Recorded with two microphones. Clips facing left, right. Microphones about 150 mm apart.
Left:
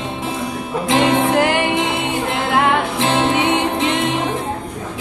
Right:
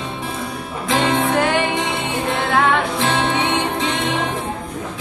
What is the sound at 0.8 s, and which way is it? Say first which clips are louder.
Music: left 3 dB; 20° left (ahead or behind).